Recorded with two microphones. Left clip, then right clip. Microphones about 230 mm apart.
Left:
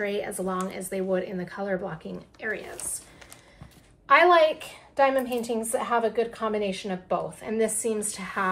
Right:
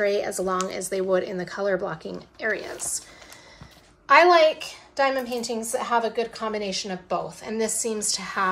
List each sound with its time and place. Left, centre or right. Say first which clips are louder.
0.0 s speech: right 5 dB; right
4.1 s a woman's voice: right 2 dB; centre